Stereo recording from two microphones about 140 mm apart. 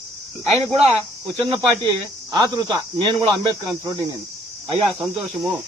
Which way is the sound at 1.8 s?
30° right (ahead or behind).